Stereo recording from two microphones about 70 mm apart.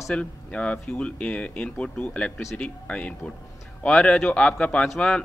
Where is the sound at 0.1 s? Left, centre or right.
Centre.